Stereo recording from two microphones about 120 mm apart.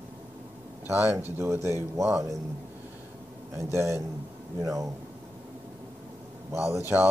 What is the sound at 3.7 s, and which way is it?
Speech, 20° right (ahead or behind).